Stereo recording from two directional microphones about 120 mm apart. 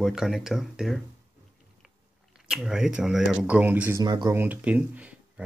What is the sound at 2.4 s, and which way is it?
Speech, 5° right (ahead or behind).